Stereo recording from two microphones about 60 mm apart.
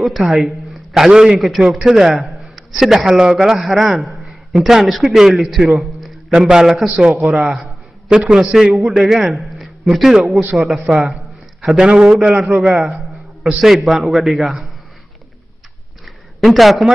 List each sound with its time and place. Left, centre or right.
0.0 s a man's voice: centre
6.3 s a man's voice: centre
7.3 s a man's voice: centre
10.9 s a man's voice: centre
13.4 s a sound: centre
13.7 s a man's voice: centre
16.1 s a sound: centre